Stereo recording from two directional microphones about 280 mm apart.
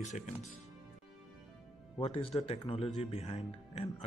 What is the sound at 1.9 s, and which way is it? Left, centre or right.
Speech, centre.